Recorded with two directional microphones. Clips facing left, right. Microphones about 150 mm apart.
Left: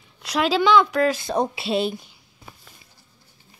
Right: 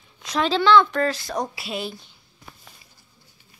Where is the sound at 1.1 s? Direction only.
25° left (ahead or behind).